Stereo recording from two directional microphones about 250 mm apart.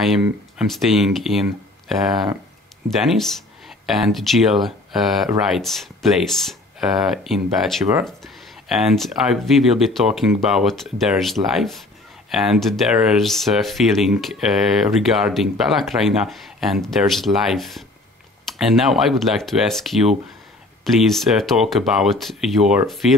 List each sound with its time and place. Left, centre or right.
0.2 s speech: centre